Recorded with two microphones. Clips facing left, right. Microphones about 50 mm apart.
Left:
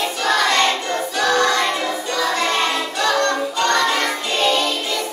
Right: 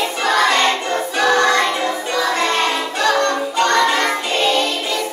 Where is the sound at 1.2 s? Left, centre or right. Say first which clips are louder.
Right 3 dB; right.